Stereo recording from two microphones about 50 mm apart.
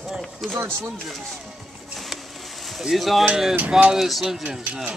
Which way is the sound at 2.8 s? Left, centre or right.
Centre.